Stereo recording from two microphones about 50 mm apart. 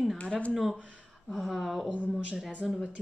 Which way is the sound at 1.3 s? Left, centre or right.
Centre.